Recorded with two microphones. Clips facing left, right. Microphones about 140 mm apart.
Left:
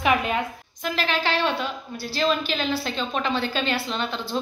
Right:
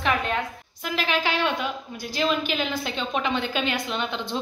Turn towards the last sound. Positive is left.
turn(degrees=-15)  # may be behind; listen again after turning